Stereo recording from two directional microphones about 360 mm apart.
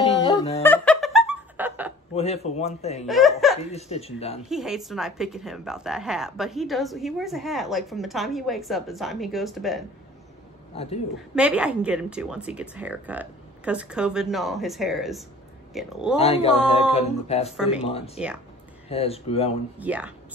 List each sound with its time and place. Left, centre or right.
0.2 s laughter: centre
2.1 s a man's voice: centre
3.1 s speech: centre
3.7 s a man's voice: centre
4.5 s speech: centre
10.8 s a man's voice: centre
11.3 s speech: centre
16.2 s a man's voice: centre
17.6 s speech: centre
17.8 s a man's voice: centre
19.8 s speech: centre